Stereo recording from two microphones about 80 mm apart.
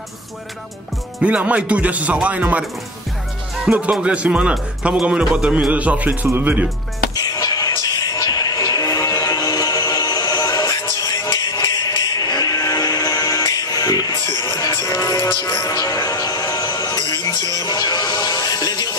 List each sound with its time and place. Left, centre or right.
1.2 s speech: centre
3.6 s speech: centre
7.3 s music: left
14.8 s music: left